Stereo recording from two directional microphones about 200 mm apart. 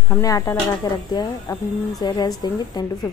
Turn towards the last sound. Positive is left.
turn(degrees=20)  # may be behind; listen again after turning